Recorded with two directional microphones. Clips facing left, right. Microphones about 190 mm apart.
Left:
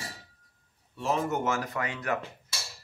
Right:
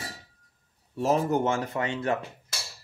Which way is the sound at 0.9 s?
40° right (ahead or behind).